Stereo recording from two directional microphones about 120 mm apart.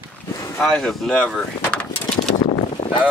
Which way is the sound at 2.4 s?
55° left (ahead or behind).